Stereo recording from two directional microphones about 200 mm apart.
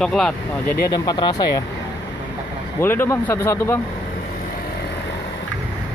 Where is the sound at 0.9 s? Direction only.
20° left (ahead or behind).